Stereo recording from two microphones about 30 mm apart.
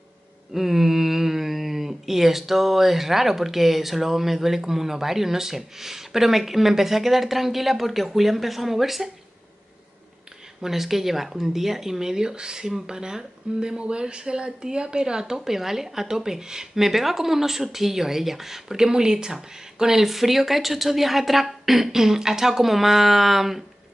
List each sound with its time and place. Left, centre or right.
0.5 s speech: centre
10.6 s speech: centre
16.8 s speech: centre
21.9 s speech: centre